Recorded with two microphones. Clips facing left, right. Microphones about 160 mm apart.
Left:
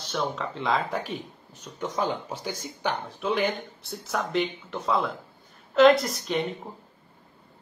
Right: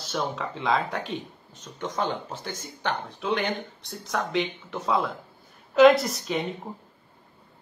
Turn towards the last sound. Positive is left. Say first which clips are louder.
# left 1 dB
turn(degrees=0)  # may be behind; listen again after turning